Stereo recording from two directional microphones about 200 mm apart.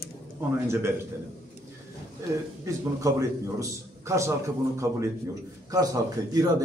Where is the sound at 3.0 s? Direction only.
15° right (ahead or behind).